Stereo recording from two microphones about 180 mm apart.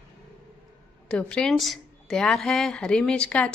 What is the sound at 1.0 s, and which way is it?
Speech, 5° left (ahead or behind).